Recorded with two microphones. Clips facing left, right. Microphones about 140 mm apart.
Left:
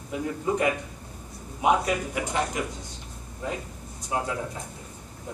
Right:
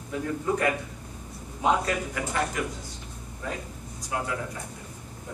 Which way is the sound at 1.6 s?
15° left (ahead or behind).